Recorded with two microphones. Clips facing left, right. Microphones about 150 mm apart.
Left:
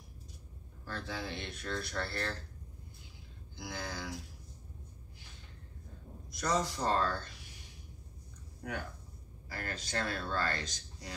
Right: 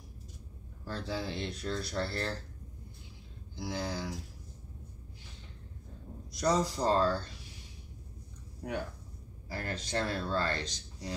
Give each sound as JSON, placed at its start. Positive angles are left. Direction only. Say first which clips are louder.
{"t": 0.8, "sound": "speech", "louder": "right 4 dB", "side_deg": -30}
{"t": 3.5, "sound": "speech", "louder": "right 5 dB", "side_deg": -30}
{"t": 6.3, "sound": "speech", "louder": "right 4 dB", "side_deg": -35}
{"t": 9.5, "sound": "speech", "louder": "right 4 dB", "side_deg": -30}